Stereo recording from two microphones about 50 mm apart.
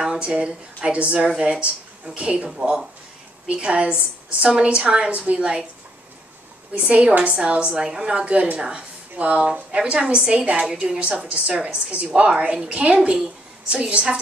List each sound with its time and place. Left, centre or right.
0.0 s a woman's voice: centre
6.7 s a woman's voice: right
12.3 s a woman's voice: centre